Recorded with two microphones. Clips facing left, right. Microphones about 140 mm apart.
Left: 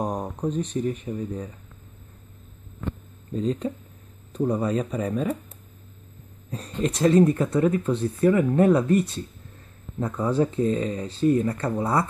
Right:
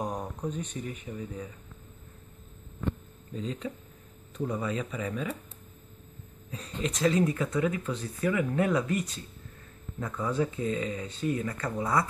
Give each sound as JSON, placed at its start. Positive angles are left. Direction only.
{"t": 0.0, "sound": "speech", "side_deg": 35}
{"t": 3.3, "sound": "speech", "side_deg": 45}
{"t": 6.5, "sound": "speech", "side_deg": 45}